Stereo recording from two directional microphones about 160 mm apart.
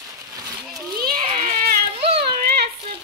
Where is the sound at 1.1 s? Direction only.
40° right (ahead or behind).